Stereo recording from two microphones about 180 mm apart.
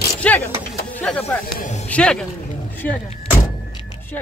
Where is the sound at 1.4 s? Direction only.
45° left (ahead or behind).